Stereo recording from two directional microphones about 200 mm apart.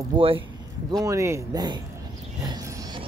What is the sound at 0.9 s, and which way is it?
Speech, 15° right (ahead or behind).